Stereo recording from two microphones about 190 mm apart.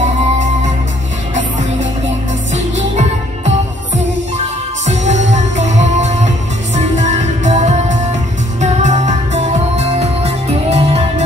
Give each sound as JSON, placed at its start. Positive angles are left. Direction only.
{"t": 2.5, "sound": "music", "side_deg": -35}